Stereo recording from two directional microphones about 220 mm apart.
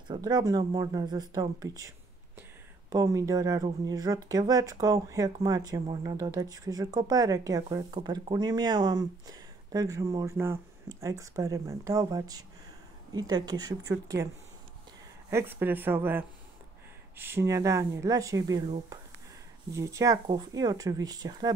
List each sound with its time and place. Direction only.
0.1 s speech: 20° right (ahead or behind)
15.2 s speech: 10° right (ahead or behind)
19.7 s speech: 15° right (ahead or behind)